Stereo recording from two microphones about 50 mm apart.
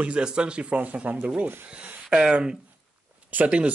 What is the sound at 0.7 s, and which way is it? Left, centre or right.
Speech, right.